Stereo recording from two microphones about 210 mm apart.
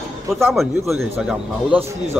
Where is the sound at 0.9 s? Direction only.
Centre (ahead or behind).